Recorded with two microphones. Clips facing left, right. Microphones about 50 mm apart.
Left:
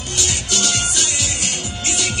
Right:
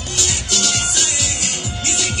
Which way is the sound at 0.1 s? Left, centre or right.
Left.